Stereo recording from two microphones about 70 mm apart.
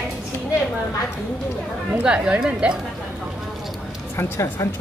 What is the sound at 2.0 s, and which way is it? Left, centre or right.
Speech, centre.